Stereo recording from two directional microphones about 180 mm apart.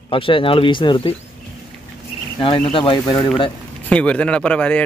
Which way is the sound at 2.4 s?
30° left (ahead or behind).